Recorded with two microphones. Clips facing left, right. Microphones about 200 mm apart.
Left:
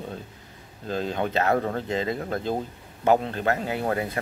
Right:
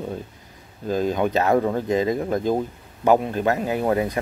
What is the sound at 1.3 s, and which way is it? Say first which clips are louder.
Speech: right 2 dB; 25° right (ahead or behind).